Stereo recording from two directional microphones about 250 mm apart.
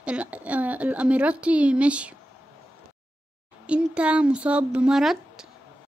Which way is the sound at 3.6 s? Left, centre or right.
Centre.